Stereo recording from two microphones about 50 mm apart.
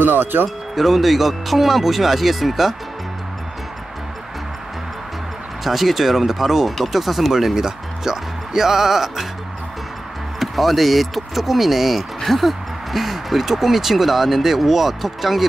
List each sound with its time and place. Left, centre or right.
0.0 s speech: right
0.7 s speech: centre
5.6 s speech: centre
10.4 s speech: centre